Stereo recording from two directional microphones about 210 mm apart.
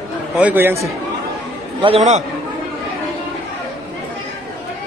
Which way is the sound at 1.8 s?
30° right (ahead or behind).